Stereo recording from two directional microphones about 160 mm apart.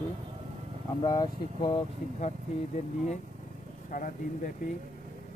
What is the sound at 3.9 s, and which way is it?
Speech, 60° left (ahead or behind).